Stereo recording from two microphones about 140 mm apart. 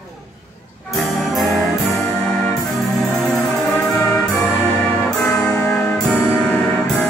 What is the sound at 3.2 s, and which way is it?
Music, 5° left (ahead or behind).